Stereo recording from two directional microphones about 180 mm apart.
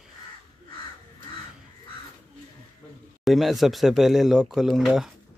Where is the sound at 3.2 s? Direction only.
Centre (ahead or behind).